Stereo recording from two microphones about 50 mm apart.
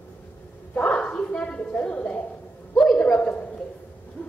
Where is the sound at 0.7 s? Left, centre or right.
Left.